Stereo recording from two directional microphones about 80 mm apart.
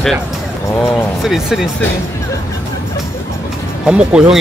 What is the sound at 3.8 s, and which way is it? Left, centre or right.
Speech, centre.